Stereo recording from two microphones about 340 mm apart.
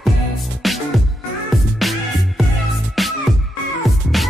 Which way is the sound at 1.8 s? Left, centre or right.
Centre.